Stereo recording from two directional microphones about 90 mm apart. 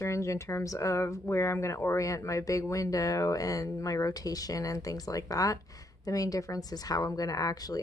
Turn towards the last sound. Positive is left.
turn(degrees=45)  # may be behind; listen again after turning